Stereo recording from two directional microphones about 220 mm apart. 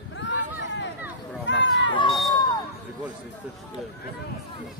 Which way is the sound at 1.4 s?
55° left (ahead or behind).